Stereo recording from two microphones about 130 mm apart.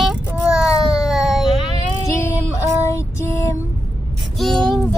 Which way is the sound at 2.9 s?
20° left (ahead or behind).